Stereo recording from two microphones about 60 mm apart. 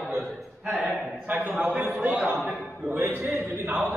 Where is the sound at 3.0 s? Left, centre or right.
Right.